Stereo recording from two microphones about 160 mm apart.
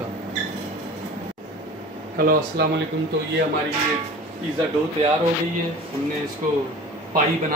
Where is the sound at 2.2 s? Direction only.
80° right.